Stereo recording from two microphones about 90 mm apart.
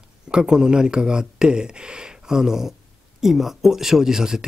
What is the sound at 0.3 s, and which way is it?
Speech, 10° right (ahead or behind).